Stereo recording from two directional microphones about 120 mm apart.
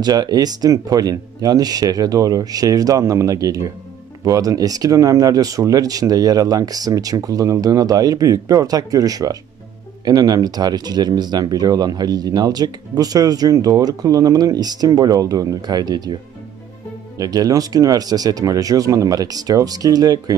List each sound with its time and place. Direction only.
0.0 s speech: 35° right (ahead or behind)
17.2 s speech: 30° right (ahead or behind)